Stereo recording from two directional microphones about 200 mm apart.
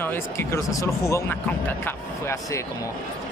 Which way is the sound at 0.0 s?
10° left (ahead or behind).